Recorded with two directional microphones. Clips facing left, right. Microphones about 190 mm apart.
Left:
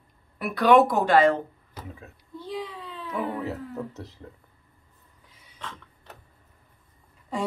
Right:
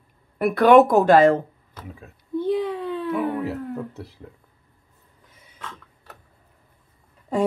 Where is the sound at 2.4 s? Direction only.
55° right (ahead or behind).